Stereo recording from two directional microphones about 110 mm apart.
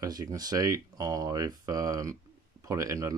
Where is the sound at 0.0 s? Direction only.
30° right (ahead or behind).